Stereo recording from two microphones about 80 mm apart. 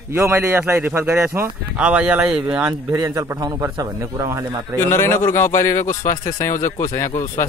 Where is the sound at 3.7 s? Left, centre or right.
Right.